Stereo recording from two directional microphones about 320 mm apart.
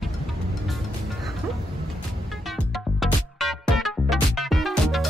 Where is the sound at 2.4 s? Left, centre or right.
Centre.